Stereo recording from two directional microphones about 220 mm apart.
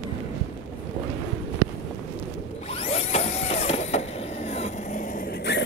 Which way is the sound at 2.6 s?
25° left (ahead or behind).